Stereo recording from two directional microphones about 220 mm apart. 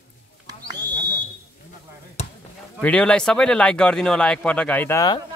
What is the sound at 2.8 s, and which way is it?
Speech, 5° left (ahead or behind).